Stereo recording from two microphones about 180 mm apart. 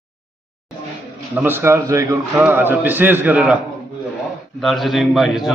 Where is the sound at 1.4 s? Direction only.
10° right (ahead or behind).